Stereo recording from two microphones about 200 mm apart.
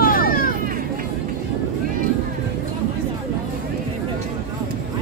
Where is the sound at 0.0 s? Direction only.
45° left (ahead or behind).